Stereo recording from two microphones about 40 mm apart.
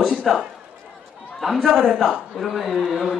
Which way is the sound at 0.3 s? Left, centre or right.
Centre.